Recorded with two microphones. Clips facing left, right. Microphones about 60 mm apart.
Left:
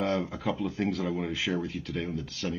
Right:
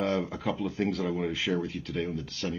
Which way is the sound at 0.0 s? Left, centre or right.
Centre.